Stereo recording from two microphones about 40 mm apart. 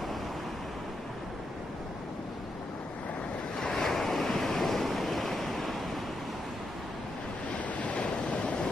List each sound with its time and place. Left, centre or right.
3.7 s waves: centre
7.5 s waves: left